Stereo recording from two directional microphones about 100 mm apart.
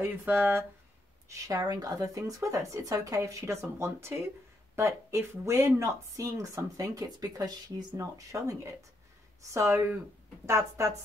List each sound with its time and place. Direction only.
0.0 s speech: 20° right (ahead or behind)
1.3 s speech: 40° right (ahead or behind)